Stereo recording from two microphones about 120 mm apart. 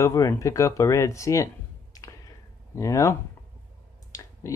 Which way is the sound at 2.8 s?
25° left (ahead or behind).